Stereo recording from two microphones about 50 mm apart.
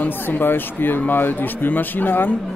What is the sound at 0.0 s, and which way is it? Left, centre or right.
Speech, left.